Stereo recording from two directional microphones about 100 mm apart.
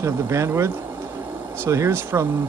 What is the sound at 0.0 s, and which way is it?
Speech, 25° right (ahead or behind).